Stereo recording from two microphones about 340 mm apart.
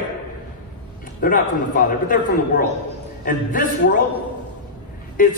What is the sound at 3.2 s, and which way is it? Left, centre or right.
Speech, left.